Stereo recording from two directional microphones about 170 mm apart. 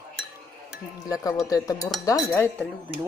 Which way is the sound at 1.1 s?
20° left (ahead or behind).